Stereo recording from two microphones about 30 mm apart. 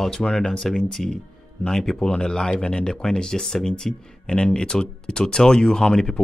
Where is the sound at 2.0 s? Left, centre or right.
Left.